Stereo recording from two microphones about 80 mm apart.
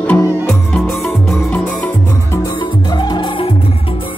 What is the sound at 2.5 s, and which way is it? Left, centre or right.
Music, left.